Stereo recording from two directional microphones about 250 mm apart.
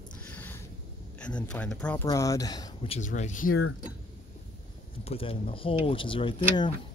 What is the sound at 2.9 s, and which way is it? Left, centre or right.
Speech, left.